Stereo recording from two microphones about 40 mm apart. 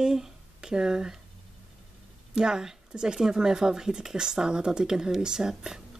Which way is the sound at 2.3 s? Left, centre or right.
Centre.